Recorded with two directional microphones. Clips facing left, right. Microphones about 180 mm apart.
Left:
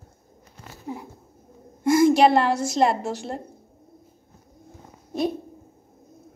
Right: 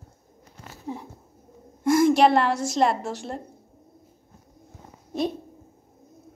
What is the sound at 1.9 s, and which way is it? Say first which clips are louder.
A woman's voice: left 1 dB; 5° left (ahead or behind).